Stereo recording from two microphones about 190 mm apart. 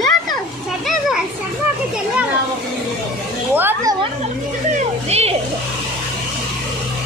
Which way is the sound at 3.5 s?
10° right (ahead or behind).